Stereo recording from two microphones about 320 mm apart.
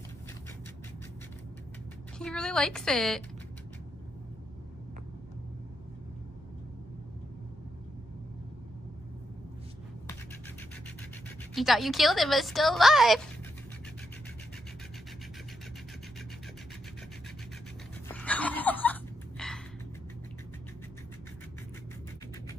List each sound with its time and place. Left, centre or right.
2.1 s a woman's voice: centre
11.5 s a woman's voice: centre
18.0 s a sound: centre